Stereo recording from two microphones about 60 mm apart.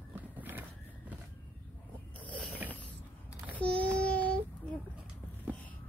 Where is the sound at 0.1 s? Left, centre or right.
Right.